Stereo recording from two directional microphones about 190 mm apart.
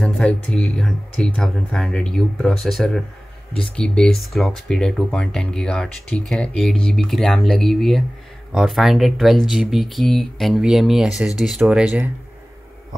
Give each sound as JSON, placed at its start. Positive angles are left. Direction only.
{"t": 0.0, "sound": "speech", "side_deg": 5}